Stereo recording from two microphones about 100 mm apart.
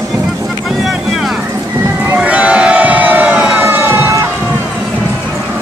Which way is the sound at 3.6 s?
25° right (ahead or behind).